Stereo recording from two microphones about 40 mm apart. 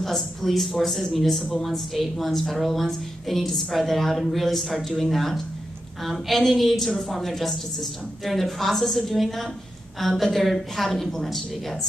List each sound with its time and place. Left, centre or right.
0.0 s a woman's voice: centre